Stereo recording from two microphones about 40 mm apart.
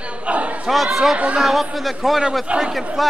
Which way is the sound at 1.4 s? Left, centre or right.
Centre.